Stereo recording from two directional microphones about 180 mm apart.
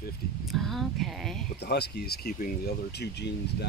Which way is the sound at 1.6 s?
65° left (ahead or behind).